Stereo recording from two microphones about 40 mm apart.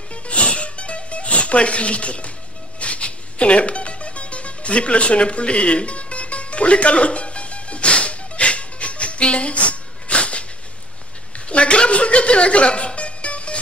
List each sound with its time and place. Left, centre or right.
0.1 s music: left